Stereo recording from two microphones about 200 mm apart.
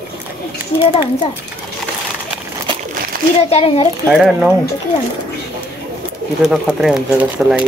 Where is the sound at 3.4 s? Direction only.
30° left (ahead or behind).